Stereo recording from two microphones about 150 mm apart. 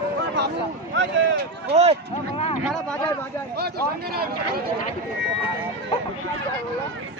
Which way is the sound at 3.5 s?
90° right.